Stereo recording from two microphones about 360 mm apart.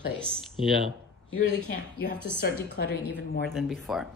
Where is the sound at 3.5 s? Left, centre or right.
Centre.